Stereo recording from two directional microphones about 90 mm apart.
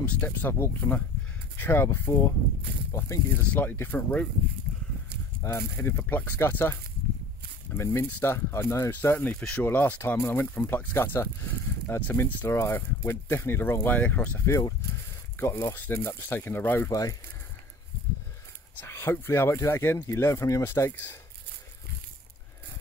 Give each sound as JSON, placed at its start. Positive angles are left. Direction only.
{"t": 0.0, "sound": "speech", "side_deg": 15}
{"t": 0.5, "sound": "speech", "side_deg": 25}
{"t": 3.5, "sound": "speech", "side_deg": 25}
{"t": 5.4, "sound": "speech", "side_deg": 25}
{"t": 9.4, "sound": "speech", "side_deg": 10}
{"t": 15.3, "sound": "a sound", "side_deg": 25}
{"t": 15.7, "sound": "speech", "side_deg": 25}
{"t": 16.9, "sound": "speech", "side_deg": 40}
{"t": 18.9, "sound": "speech", "side_deg": 25}